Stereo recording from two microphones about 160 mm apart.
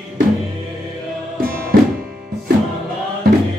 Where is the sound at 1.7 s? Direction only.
65° right (ahead or behind).